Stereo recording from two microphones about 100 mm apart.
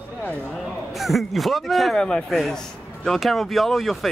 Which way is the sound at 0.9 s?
Centre (ahead or behind).